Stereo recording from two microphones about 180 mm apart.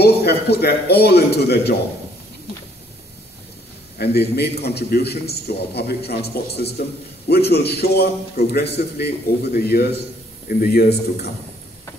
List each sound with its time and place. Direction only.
0.0 s a man's voice: 65° left (ahead or behind)
4.0 s a man's voice: 65° left (ahead or behind)